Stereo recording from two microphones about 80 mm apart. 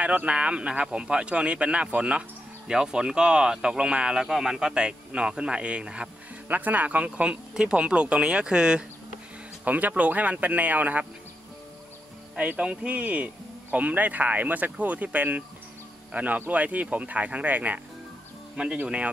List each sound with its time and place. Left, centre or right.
0.0 s speech: centre
12.4 s speech: centre